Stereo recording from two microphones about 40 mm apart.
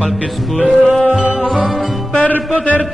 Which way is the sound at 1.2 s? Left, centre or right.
Right.